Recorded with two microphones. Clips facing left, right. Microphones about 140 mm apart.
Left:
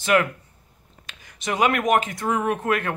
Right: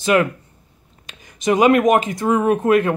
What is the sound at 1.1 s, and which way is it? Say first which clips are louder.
Speech: right 10 dB; 20° right (ahead or behind).